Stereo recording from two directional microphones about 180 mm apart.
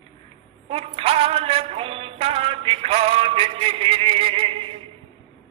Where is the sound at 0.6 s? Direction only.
35° right (ahead or behind).